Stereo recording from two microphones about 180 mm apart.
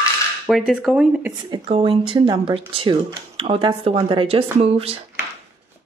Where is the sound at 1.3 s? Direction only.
30° right (ahead or behind).